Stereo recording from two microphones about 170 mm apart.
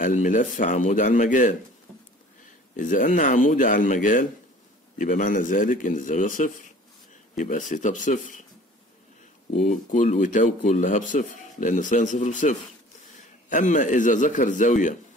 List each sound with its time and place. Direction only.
0.0 s speech: 45° left (ahead or behind)
2.7 s speech: 50° left (ahead or behind)
9.7 s speech: 45° left (ahead or behind)